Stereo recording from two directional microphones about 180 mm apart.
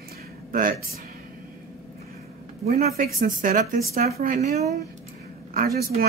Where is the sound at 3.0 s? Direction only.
50° right (ahead or behind).